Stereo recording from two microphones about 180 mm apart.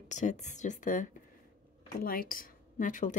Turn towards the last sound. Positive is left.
turn(degrees=45)  # may be behind; listen again after turning